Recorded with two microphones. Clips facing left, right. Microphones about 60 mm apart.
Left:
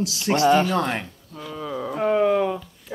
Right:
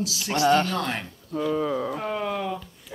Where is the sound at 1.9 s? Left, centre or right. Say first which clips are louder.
Left 9 dB; centre.